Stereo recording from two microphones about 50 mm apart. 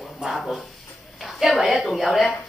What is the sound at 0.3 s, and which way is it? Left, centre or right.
A woman's voice, centre.